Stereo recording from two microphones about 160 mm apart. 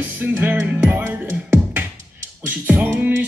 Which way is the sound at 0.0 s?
10° right (ahead or behind).